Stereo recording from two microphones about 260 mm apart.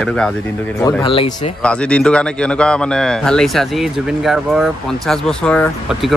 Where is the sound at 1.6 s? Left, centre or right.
Centre.